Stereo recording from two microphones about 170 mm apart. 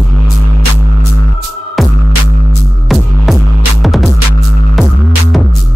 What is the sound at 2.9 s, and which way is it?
Music, centre (ahead or behind).